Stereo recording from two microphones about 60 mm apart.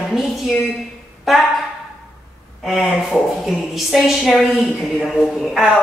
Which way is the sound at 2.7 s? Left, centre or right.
Centre.